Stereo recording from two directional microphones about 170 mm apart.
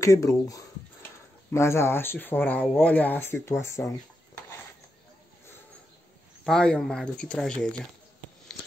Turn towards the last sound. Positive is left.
turn(degrees=5)  # may be behind; listen again after turning